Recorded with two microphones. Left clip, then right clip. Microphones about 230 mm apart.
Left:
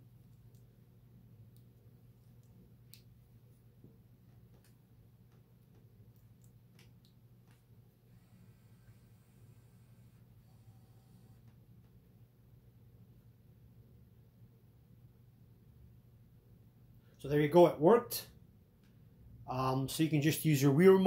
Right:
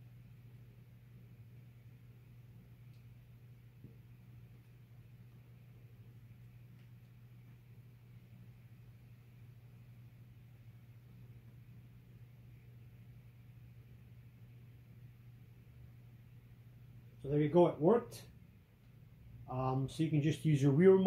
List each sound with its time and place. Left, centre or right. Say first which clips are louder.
17.5 s speech: left 4 dB; left
19.4 s speech: left 3 dB; left